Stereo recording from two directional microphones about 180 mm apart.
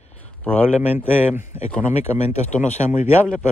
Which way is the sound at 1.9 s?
35° left (ahead or behind).